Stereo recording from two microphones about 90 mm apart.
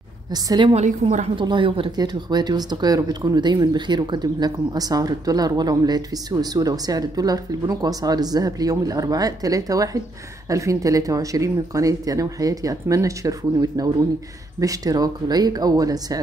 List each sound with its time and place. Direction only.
0.3 s speech: 45° right (ahead or behind)
1.0 s speech: 65° right (ahead or behind)
2.0 s speech: 50° right (ahead or behind)